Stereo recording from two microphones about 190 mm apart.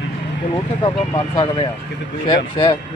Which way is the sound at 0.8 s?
25° left (ahead or behind).